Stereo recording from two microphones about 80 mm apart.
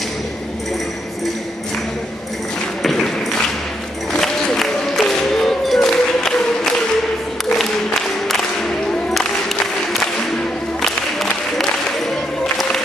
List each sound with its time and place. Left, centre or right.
2.8 s ping: centre
4.1 s music: centre
10.8 s music: centre